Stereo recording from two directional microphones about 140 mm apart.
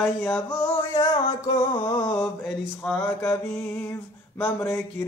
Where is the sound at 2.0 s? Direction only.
15° left (ahead or behind).